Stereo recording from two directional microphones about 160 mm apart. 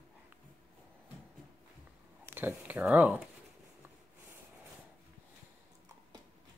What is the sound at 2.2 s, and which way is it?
Speech, 10° right (ahead or behind).